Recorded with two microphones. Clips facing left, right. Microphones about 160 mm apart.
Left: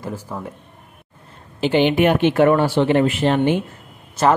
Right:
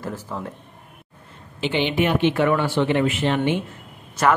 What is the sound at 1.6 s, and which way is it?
Speech, 45° left (ahead or behind).